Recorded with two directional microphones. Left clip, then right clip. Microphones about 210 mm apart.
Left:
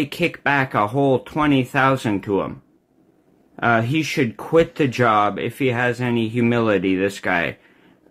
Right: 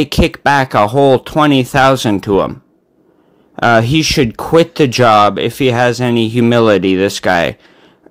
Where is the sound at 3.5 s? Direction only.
45° right (ahead or behind).